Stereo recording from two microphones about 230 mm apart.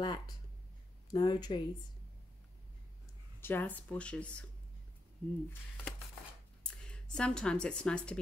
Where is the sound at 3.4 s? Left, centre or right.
Centre.